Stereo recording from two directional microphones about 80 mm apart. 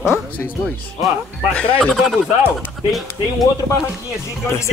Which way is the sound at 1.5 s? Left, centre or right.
Centre.